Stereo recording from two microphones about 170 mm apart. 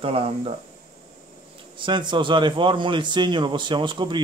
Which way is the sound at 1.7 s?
30° right (ahead or behind).